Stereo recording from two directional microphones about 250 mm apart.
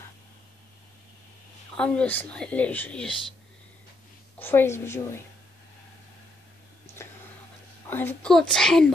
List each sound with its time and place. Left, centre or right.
1.8 s a woman's voice: centre
4.4 s a woman's voice: centre
7.9 s a woman's voice: centre